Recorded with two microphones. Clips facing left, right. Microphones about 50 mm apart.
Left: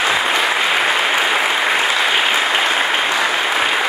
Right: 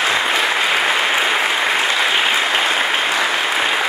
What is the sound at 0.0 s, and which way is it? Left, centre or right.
Applause, centre.